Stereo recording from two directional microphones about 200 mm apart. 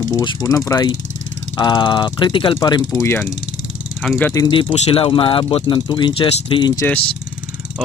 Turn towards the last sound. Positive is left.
turn(degrees=25)  # may be behind; listen again after turning